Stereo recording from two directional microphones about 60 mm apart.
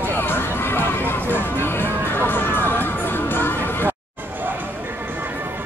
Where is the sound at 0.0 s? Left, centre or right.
Left.